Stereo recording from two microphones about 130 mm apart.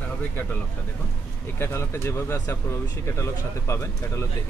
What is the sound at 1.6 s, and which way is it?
Speech, 20° left (ahead or behind).